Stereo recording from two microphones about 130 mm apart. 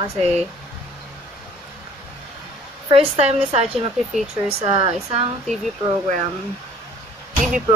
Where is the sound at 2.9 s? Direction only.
50° right (ahead or behind).